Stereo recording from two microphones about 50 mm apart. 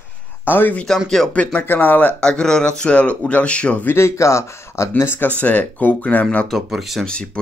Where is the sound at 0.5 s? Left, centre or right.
Left.